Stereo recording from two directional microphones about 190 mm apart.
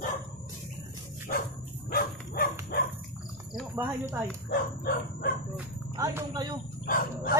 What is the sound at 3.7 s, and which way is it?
Speech, 10° right (ahead or behind).